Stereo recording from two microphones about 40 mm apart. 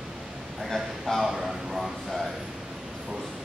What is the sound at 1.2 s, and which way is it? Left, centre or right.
Speech, centre.